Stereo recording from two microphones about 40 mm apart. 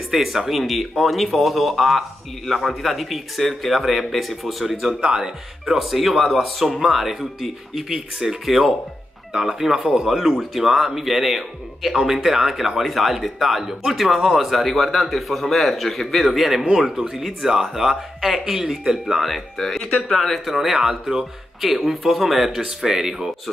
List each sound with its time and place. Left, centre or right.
0.1 s speech: centre
19.5 s speech: centre
20.2 s speech: centre
21.5 s speech: centre